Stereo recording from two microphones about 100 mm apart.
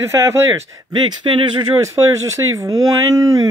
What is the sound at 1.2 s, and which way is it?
Speech, 55° right (ahead or behind).